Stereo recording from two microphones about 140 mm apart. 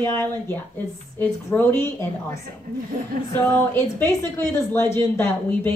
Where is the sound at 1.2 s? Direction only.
15° left (ahead or behind).